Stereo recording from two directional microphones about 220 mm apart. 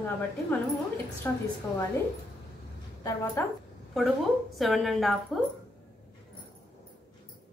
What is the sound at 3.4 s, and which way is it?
A woman's voice, 10° left (ahead or behind).